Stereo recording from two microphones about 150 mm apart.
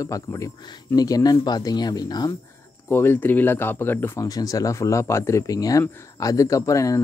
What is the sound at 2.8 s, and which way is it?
Speech, 15° left (ahead or behind).